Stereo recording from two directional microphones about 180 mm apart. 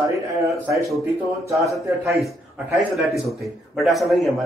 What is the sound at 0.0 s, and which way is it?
Speech, 15° right (ahead or behind).